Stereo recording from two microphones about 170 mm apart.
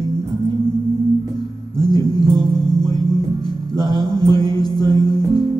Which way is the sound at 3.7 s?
25° left (ahead or behind).